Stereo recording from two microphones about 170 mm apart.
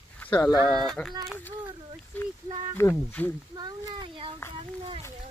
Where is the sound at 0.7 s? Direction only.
5° left (ahead or behind).